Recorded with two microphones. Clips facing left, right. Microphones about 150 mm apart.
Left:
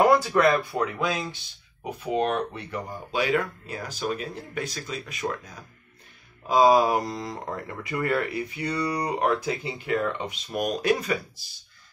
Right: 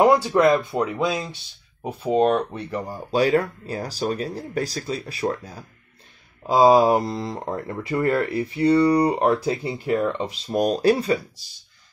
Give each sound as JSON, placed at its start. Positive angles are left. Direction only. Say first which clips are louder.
{"t": 0.1, "sound": "speech", "louder": "right 3 dB", "side_deg": -20}
{"t": 1.8, "sound": "speech", "louder": "right 6 dB", "side_deg": -30}
{"t": 9.8, "sound": "speech", "louder": "right 4 dB", "side_deg": -20}
{"t": 10.2, "sound": "speech", "louder": "right 6 dB", "side_deg": -30}